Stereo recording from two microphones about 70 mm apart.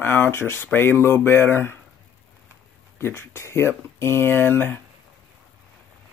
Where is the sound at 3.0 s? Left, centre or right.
Left.